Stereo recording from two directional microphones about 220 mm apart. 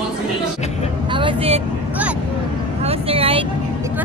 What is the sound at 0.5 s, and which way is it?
Speech, 30° left (ahead or behind).